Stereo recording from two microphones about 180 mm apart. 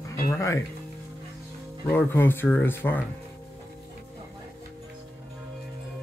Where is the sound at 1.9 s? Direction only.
10° left (ahead or behind).